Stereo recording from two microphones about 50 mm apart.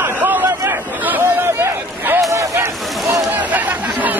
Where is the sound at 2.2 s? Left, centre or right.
Right.